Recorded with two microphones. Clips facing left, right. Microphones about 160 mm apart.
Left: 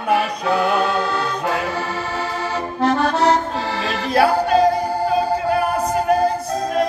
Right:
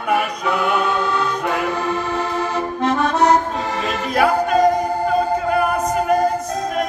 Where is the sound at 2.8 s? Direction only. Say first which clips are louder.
Even; 35° left (ahead or behind).